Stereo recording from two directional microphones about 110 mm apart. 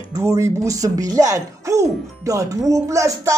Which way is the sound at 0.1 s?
30° right (ahead or behind).